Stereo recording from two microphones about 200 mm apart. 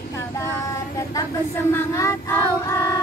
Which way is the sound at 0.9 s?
15° left (ahead or behind).